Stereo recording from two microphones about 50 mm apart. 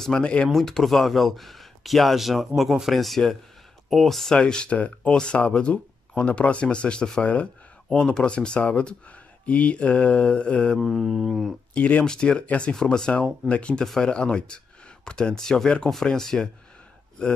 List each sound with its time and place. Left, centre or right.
0.2 s speech: left
0.5 s speech: centre
4.4 s speech: left
10.8 s mantra: centre
11.7 s speech: left
12.0 s speech: centre